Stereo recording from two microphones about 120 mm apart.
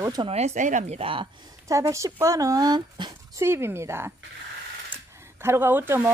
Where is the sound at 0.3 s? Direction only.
65° right (ahead or behind); by 1.3 s 50° right (ahead or behind).